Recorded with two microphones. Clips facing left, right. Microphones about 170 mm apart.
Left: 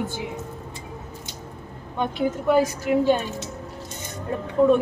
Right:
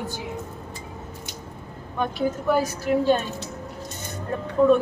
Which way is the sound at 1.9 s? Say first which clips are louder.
Left 1 dB; 20° left (ahead or behind).